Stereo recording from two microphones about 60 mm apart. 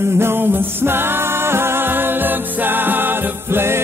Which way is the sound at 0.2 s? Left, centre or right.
Right.